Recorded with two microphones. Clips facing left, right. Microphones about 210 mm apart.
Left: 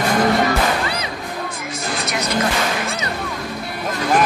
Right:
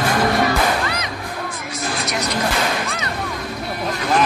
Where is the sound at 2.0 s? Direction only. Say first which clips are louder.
Left 1 dB; centre (ahead or behind).